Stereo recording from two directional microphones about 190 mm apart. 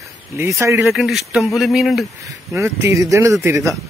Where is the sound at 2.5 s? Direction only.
15° right (ahead or behind).